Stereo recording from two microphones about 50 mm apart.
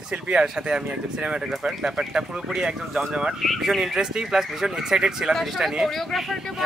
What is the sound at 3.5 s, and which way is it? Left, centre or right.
Speech, centre.